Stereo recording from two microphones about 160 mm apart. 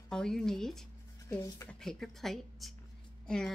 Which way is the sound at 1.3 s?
20° left (ahead or behind).